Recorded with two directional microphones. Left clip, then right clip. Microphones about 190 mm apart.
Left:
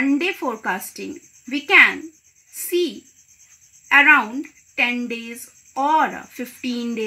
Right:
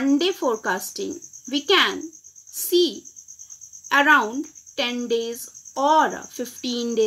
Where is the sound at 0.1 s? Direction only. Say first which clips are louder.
Right 1 dB; 40° left (ahead or behind).